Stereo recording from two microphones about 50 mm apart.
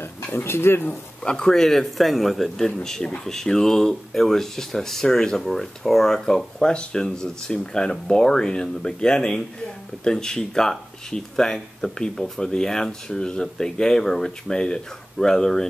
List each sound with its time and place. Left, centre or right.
0.0 s speech: left
1.2 s speech: centre